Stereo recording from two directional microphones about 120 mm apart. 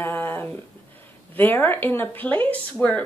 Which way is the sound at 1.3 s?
15° left (ahead or behind).